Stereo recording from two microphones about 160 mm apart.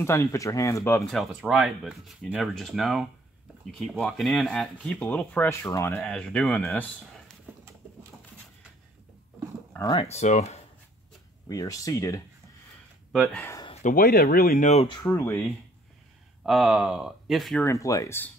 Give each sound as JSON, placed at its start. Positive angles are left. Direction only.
{"t": 0.0, "sound": "speech", "side_deg": 15}
{"t": 1.1, "sound": "speech", "side_deg": 0}
{"t": 6.0, "sound": "speech", "side_deg": 5}
{"t": 9.9, "sound": "speech", "side_deg": 40}
{"t": 11.4, "sound": "speech", "side_deg": 20}
{"t": 13.1, "sound": "speech", "side_deg": 5}
{"t": 13.8, "sound": "speech", "side_deg": 65}
{"t": 15.0, "sound": "speech", "side_deg": 15}
{"t": 16.4, "sound": "speech", "side_deg": 0}
{"t": 17.6, "sound": "speech", "side_deg": 20}